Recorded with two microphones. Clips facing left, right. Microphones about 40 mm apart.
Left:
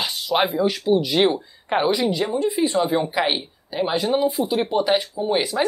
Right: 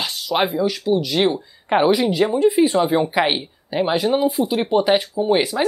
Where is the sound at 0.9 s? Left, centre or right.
Centre.